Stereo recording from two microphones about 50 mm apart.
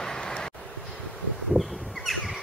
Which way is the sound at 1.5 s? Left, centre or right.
Centre.